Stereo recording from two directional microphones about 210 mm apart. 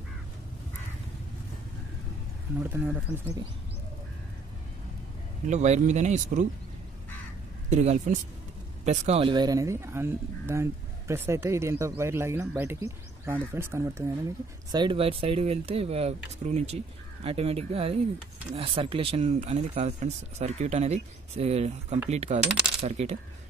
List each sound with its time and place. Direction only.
2.7 s speech: 10° right (ahead or behind)
5.5 s speech: 35° right (ahead or behind)
7.7 s speech: 35° right (ahead or behind)